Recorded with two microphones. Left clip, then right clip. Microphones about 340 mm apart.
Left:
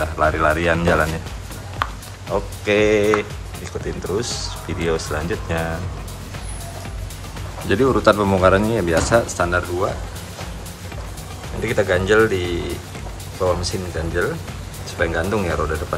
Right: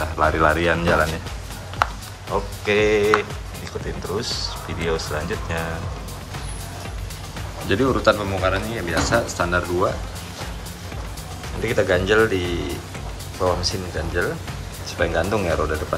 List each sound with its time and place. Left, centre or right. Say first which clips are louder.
0.0 s speech: left 1 dB; centre
2.3 s speech: left 2 dB; centre
7.6 s speech: left 3 dB; centre
11.6 s speech: left 1 dB; centre